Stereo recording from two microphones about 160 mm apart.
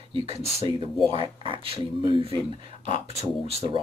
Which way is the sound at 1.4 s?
35° right (ahead or behind).